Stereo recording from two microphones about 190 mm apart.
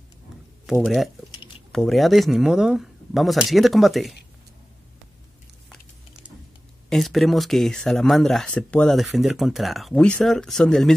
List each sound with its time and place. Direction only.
0.7 s speech: centre (ahead or behind)
6.9 s speech: centre (ahead or behind)